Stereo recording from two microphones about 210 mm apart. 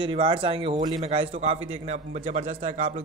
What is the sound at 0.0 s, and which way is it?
A man's voice, 25° right (ahead or behind).